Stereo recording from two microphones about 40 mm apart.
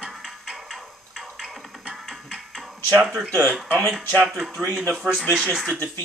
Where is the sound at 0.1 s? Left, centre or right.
Centre.